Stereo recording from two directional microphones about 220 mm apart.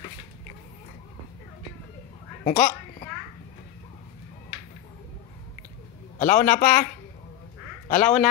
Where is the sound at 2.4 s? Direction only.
40° left (ahead or behind).